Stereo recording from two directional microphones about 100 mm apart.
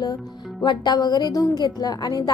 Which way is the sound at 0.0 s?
40° left (ahead or behind).